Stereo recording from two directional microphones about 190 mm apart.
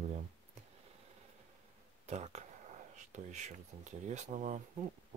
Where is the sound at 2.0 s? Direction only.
35° right (ahead or behind).